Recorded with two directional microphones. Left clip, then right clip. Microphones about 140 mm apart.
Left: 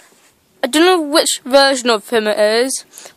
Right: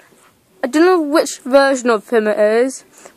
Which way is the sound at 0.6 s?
35° left (ahead or behind).